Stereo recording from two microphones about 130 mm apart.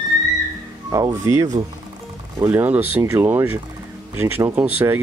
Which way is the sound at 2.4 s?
20° right (ahead or behind).